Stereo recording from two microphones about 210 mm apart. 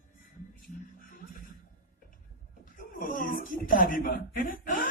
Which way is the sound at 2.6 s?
40° left (ahead or behind).